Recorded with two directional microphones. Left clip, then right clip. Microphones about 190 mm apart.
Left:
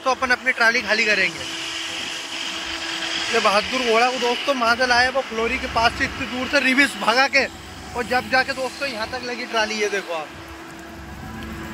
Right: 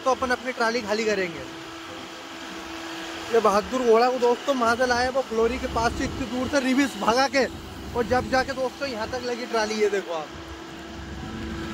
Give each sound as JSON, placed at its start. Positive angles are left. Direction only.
{"t": 0.0, "sound": "speech", "side_deg": -10}
{"t": 1.6, "sound": "a sound", "side_deg": -60}
{"t": 3.3, "sound": "speech", "side_deg": -15}
{"t": 9.5, "sound": "speech", "side_deg": 0}